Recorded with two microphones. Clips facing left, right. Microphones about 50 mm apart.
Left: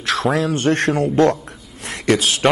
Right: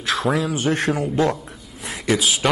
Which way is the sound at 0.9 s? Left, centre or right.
Centre.